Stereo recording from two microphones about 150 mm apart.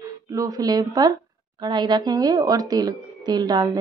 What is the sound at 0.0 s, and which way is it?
A woman's voice, 20° right (ahead or behind).